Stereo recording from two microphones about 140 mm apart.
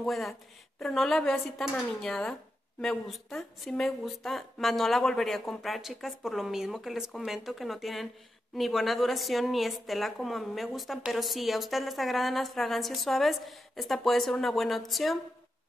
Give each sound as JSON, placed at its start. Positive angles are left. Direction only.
{"t": 0.0, "sound": "a woman's voice", "side_deg": 0}